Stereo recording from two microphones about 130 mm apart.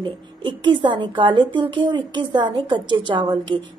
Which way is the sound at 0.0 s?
40° right (ahead or behind).